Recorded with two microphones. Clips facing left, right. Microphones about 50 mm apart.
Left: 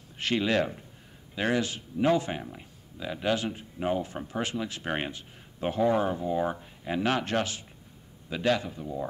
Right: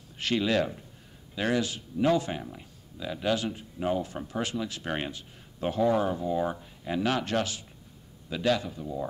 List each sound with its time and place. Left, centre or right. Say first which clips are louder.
0.2 s speech: even; left